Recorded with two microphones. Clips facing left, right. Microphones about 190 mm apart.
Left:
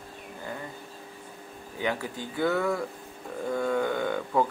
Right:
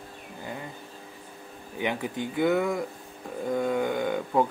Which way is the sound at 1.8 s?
20° right (ahead or behind).